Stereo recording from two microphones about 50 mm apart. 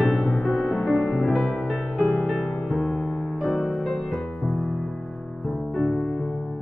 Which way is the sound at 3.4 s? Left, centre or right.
Left.